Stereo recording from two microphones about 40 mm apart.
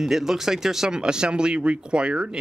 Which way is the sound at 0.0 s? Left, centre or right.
Centre.